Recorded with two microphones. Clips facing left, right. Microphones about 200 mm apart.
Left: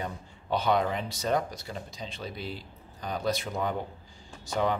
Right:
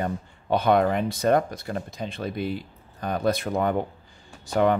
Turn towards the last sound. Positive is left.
turn(degrees=-60)  # may be behind; listen again after turning